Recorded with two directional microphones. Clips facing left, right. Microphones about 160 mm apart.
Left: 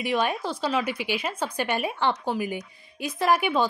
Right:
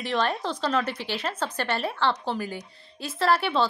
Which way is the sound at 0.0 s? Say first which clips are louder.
Left 1 dB; 10° left (ahead or behind).